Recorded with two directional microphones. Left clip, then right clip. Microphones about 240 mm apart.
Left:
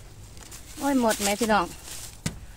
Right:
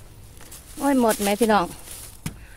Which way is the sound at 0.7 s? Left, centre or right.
Right.